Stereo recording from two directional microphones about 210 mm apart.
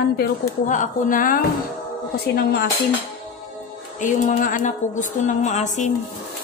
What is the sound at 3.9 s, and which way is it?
A woman's voice, 35° left (ahead or behind).